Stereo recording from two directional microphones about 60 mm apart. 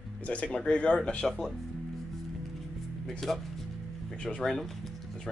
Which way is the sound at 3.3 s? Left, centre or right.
Centre.